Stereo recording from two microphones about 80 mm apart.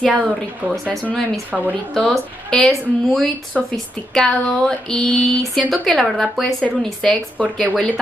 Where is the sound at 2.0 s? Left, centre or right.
Centre.